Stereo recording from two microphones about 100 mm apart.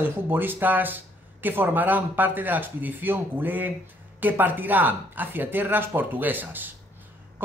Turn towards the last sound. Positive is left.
turn(degrees=-20)  # may be behind; listen again after turning